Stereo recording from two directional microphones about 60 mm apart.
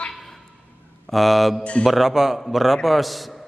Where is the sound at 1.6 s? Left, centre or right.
Centre.